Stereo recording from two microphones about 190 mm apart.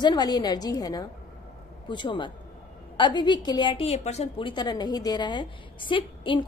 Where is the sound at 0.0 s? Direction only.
20° left (ahead or behind).